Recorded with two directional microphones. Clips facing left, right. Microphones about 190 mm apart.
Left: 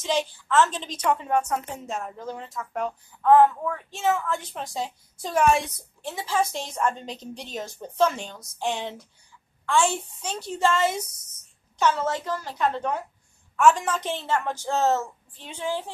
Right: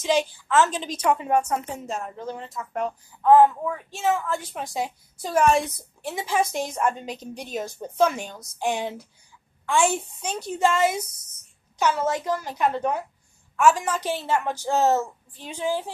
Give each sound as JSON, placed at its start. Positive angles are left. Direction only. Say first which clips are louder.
{"t": 0.0, "sound": "a woman's voice", "louder": "right 3 dB", "side_deg": -10}
{"t": 6.0, "sound": "a woman's voice", "louder": "right 1 dB", "side_deg": -15}